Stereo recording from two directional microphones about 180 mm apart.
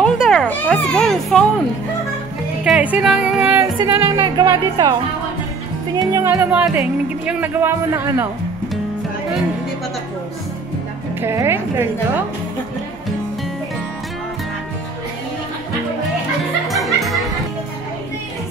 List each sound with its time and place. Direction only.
0.0 s children playing: centre (ahead or behind)
2.6 s music: 5° right (ahead or behind)
3.8 s speech: 20° right (ahead or behind)
5.9 s speech: 20° right (ahead or behind)
11.1 s speech: 15° right (ahead or behind)
16.6 s music: centre (ahead or behind)